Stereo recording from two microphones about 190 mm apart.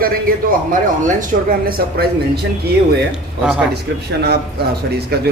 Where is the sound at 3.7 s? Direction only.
60° right (ahead or behind).